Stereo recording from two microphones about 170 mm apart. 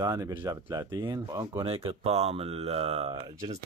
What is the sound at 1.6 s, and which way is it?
Speech, 35° right (ahead or behind).